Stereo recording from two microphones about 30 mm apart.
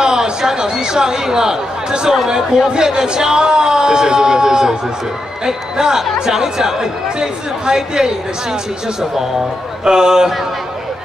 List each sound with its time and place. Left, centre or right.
0.0 s speech: right
9.8 s speech: right